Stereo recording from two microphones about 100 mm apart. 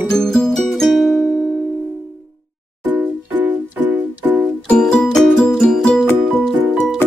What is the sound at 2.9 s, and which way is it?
Music, 15° right (ahead or behind).